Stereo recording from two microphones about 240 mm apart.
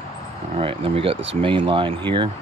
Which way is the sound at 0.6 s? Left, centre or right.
Right.